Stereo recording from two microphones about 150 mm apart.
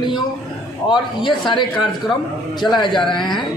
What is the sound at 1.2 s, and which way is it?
Speech, 30° left (ahead or behind).